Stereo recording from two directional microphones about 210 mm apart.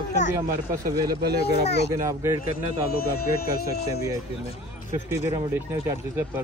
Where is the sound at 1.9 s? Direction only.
15° right (ahead or behind).